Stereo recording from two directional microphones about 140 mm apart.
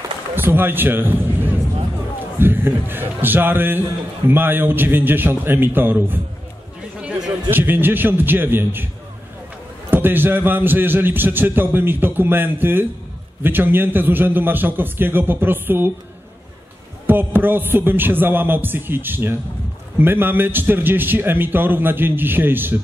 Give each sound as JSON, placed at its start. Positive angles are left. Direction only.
{"t": 0.4, "sound": "a man's voice", "side_deg": -15}
{"t": 7.2, "sound": "a sound", "side_deg": -25}
{"t": 7.5, "sound": "a man's voice", "side_deg": -15}
{"t": 9.8, "sound": "a man's voice", "side_deg": -15}
{"t": 17.0, "sound": "a man's voice", "side_deg": -15}